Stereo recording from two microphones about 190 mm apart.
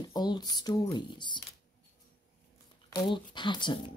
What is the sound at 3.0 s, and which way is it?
Speech, 25° left (ahead or behind).